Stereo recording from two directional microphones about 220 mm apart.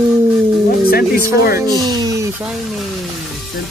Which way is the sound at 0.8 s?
45° left (ahead or behind).